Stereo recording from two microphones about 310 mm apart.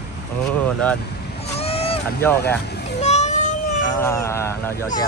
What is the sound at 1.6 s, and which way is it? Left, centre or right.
Boat, centre.